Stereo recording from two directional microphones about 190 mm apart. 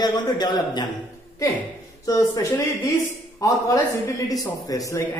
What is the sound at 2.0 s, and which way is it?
Speech, 20° left (ahead or behind).